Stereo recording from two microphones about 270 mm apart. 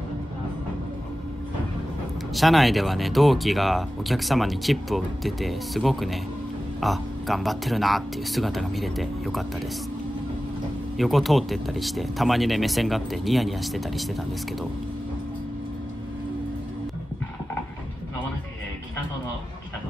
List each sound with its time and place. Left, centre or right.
2.3 s speech: centre
11.0 s speech: centre